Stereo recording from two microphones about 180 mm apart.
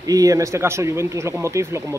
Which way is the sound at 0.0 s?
20° right (ahead or behind).